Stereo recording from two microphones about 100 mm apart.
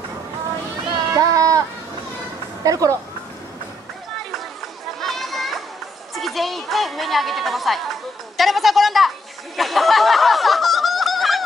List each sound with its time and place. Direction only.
1.1 s child singing: 35° right (ahead or behind)
2.6 s speech: 35° right (ahead or behind)
5.0 s children playing: centre (ahead or behind)
6.1 s a sound: centre (ahead or behind)
9.6 s snicker: centre (ahead or behind)